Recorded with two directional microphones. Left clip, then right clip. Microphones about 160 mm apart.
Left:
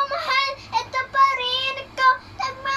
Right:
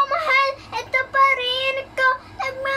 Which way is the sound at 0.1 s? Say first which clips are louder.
Right 4 dB; 15° right (ahead or behind).